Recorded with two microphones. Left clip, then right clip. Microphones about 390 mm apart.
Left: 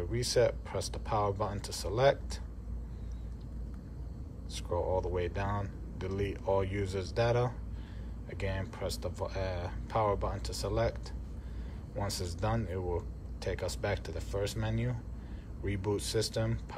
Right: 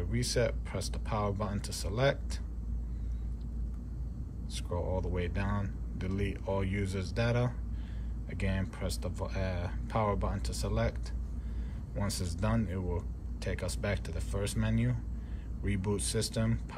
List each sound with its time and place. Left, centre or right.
0.0 s speech: centre
4.6 s speech: centre